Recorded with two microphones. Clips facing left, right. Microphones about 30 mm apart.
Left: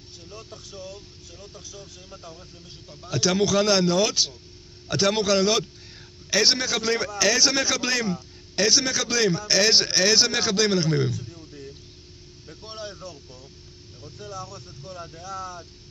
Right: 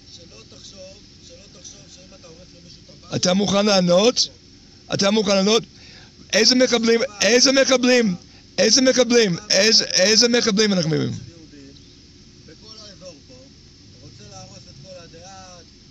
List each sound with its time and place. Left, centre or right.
3.1 s speech: right
3.4 s a man's voice: right
6.8 s a man's voice: right
12.7 s vehicle: left
14.0 s vehicle: left